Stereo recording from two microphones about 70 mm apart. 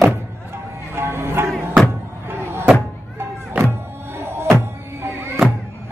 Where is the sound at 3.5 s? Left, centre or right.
Right.